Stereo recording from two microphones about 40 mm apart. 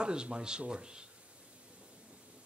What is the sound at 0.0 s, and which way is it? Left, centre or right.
Speech, right.